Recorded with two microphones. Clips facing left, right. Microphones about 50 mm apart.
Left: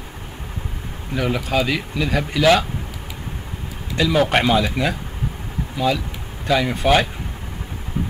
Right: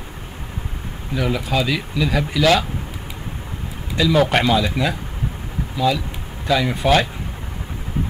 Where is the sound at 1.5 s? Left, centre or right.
Centre.